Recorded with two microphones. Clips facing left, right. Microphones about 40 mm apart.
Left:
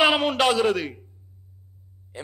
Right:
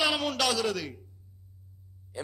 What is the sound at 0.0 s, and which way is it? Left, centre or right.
A man's voice, left.